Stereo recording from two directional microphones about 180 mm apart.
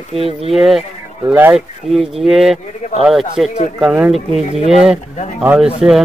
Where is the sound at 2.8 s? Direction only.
40° left (ahead or behind).